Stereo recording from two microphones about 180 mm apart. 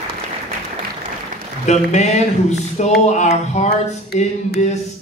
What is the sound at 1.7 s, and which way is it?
A man's voice, 40° left (ahead or behind).